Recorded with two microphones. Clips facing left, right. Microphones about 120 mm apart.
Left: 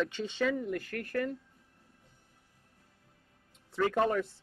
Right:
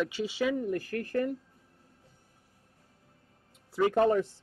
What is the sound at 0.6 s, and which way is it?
Speech, 35° right (ahead or behind).